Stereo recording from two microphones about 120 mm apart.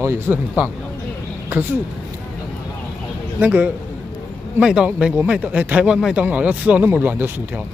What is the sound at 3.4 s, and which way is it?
Speech, 15° right (ahead or behind).